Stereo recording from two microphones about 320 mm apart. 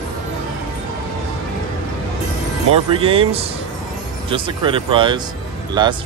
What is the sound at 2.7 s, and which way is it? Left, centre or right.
Speech, centre.